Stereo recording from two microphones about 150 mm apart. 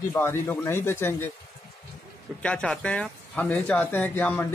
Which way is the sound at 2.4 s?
5° left (ahead or behind).